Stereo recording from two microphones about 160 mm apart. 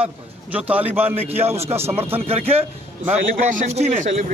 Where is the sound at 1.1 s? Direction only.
40° right (ahead or behind).